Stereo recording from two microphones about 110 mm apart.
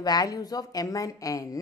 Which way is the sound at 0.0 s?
35° left (ahead or behind).